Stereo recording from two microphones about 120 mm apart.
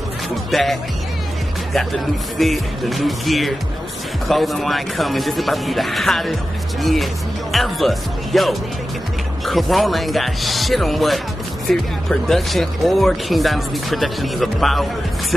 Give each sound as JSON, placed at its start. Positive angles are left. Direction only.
{"t": 0.5, "sound": "music", "side_deg": 0}
{"t": 1.7, "sound": "speech", "side_deg": 0}